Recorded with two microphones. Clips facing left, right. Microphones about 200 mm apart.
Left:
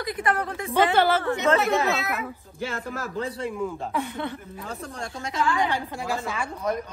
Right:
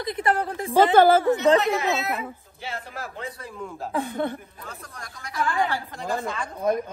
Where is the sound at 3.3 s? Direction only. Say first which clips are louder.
Left 7 dB; 25° left (ahead or behind).